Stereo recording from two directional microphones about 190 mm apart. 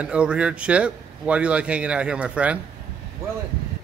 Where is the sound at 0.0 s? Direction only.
5° right (ahead or behind).